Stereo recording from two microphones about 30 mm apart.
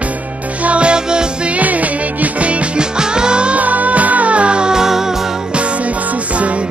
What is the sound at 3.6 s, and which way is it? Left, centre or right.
Music, right.